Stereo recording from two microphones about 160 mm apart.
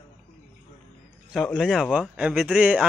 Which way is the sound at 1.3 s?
Centre (ahead or behind).